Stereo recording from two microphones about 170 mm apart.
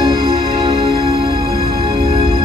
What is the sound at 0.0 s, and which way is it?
Music, 30° right (ahead or behind).